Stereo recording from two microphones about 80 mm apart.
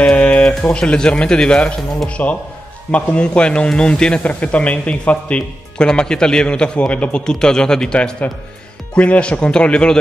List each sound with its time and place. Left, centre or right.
0.0 s speech: centre